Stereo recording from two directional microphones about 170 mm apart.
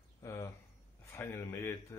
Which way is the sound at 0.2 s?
20° left (ahead or behind).